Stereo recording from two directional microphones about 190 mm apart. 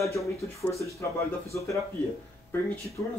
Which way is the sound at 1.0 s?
15° left (ahead or behind).